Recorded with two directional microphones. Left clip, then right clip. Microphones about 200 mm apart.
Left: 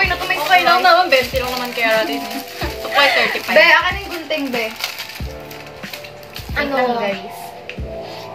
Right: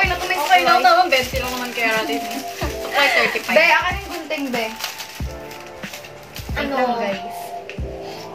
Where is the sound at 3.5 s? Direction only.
15° left (ahead or behind).